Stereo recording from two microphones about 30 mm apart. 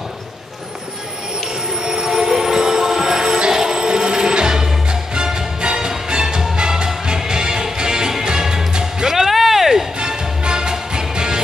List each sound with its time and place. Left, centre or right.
1.7 s train: centre
4.8 s music: right; by 9.8 s centre
9.9 s music: right